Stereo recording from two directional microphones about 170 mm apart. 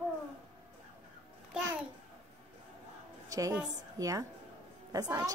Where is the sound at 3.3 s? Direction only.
20° right (ahead or behind).